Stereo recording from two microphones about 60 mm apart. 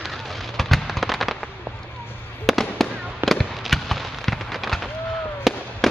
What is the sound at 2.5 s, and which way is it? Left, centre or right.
Fireworks, centre.